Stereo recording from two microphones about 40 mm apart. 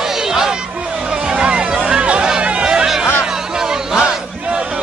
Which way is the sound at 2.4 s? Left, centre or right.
Right.